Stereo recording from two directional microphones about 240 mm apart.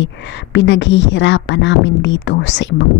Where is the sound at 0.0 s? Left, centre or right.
Left.